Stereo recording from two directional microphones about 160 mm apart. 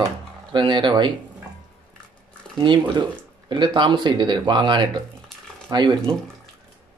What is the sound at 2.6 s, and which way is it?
A man's voice, 30° right (ahead or behind).